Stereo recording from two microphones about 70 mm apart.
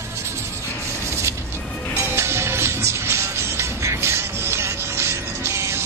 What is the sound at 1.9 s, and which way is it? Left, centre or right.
Music, right.